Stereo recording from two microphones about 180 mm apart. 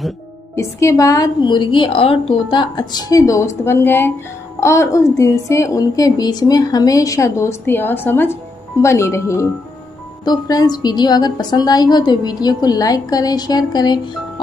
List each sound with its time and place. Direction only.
0.6 s a woman's voice: 15° left (ahead or behind)